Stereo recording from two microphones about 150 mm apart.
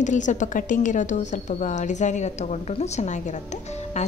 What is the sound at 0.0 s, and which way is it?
Speech, 55° left (ahead or behind).